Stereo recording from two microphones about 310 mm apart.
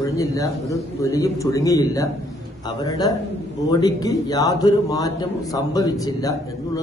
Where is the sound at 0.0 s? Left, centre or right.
Centre.